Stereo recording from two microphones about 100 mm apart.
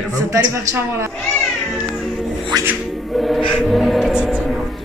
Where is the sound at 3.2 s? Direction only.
Centre (ahead or behind).